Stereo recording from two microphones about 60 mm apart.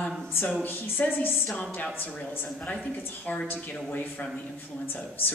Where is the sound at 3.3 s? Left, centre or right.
Left.